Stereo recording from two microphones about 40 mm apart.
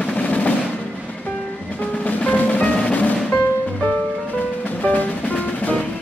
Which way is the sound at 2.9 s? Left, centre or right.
Left.